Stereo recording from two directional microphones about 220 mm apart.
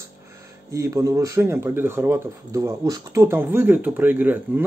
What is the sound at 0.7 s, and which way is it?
Speech, 15° right (ahead or behind).